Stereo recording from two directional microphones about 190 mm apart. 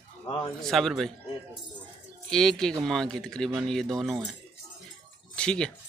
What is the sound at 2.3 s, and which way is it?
Speech, 5° left (ahead or behind).